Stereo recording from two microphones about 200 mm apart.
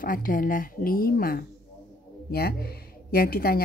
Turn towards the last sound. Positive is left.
turn(degrees=50)  # may be behind; listen again after turning